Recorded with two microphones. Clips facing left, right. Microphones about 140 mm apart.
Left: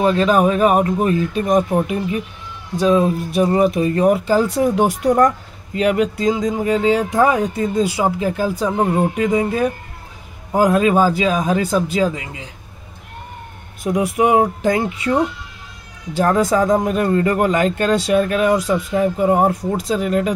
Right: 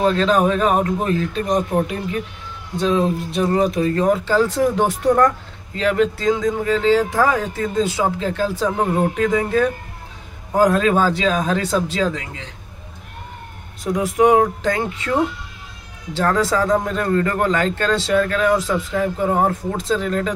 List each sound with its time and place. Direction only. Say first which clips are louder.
0.0 s speech: left 2 dB; 10° left (ahead or behind)
13.9 s speech: right 1 dB; 15° left (ahead or behind)
16.2 s speech: left 3 dB; 15° left (ahead or behind)